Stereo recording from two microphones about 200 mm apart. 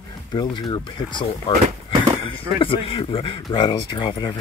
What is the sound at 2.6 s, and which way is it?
Speech, 25° left (ahead or behind).